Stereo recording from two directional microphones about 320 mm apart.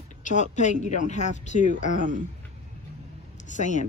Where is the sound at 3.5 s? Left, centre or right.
Left.